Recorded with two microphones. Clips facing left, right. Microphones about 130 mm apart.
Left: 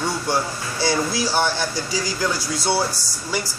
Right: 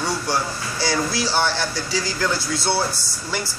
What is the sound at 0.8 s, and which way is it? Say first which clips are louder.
Speech: left 1 dB; 20° left (ahead or behind).